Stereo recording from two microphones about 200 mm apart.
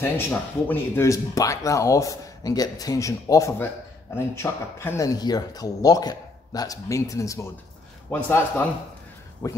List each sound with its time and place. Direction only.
0.0 s speech: 10° left (ahead or behind)